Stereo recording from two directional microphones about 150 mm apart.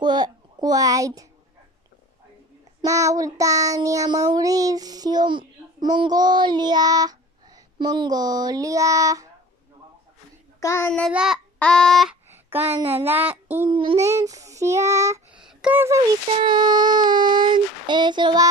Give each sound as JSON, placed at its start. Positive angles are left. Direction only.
{"t": 0.0, "sound": "a child's voice", "side_deg": -25}
{"t": 2.8, "sound": "child singing", "side_deg": -20}
{"t": 10.6, "sound": "child singing", "side_deg": 20}
{"t": 11.1, "sound": "child singing", "side_deg": -5}
{"t": 11.5, "sound": "a sound", "side_deg": 5}
{"t": 12.3, "sound": "speech", "side_deg": -15}
{"t": 13.7, "sound": "child singing", "side_deg": -35}
{"t": 14.0, "sound": "child singing", "side_deg": -20}
{"t": 15.3, "sound": "a sound", "side_deg": -5}
{"t": 16.3, "sound": "child singing", "side_deg": -35}